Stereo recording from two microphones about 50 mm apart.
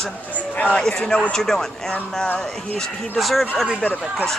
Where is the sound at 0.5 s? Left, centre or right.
Left; by 1.6 s centre.